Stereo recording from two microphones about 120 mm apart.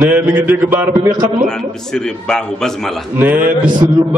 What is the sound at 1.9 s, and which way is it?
A man's voice, 5° left (ahead or behind).